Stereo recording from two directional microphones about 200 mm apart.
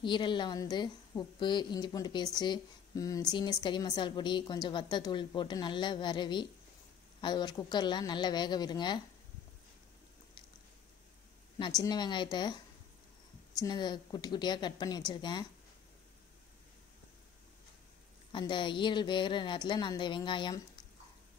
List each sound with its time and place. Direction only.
0.0 s speech: 25° left (ahead or behind)
11.8 s speech: 20° left (ahead or behind)
13.6 s speech: 20° left (ahead or behind)
18.3 s speech: 25° left (ahead or behind)